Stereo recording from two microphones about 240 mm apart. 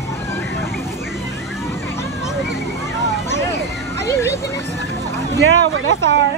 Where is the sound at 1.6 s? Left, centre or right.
Centre.